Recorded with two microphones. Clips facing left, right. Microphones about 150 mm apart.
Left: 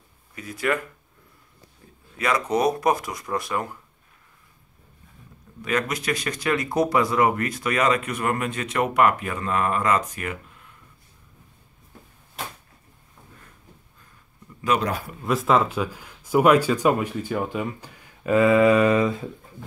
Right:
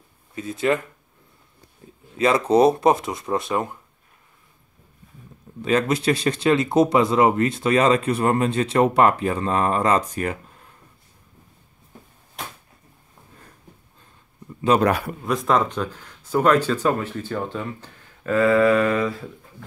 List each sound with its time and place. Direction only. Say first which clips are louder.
0.3 s speech: right 4 dB; 25° right (ahead or behind)
2.1 s speech: right 6 dB; 30° right (ahead or behind)
5.6 s speech: right 5 dB; 30° right (ahead or behind)
14.8 s a man's voice: right 7 dB; 65° right (ahead or behind)
15.2 s speech: even; centre (ahead or behind); by 19.2 s 20° left (ahead or behind)